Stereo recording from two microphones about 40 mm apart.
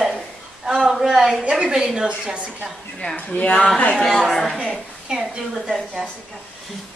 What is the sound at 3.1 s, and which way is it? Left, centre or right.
Speech, left.